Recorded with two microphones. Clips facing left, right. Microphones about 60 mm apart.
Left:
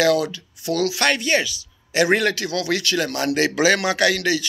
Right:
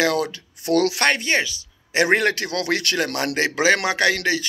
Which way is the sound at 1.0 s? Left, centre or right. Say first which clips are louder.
Even; right.